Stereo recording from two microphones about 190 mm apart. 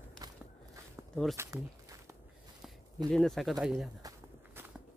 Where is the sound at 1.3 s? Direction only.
15° right (ahead or behind).